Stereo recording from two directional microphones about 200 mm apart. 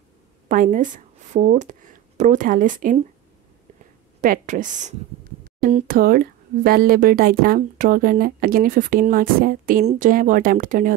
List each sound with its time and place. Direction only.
0.5 s speech: 40° right (ahead or behind)
4.2 s a woman's voice: 40° right (ahead or behind)